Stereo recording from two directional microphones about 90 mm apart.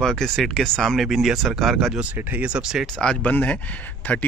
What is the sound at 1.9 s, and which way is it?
Speech, 15° right (ahead or behind).